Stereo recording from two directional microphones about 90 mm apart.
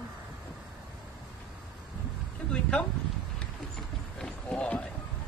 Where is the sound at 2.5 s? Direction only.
10° left (ahead or behind).